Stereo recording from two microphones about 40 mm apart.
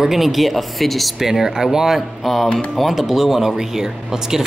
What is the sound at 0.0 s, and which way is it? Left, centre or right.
Speech, centre.